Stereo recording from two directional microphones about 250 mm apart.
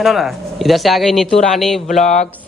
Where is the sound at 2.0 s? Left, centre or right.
Left.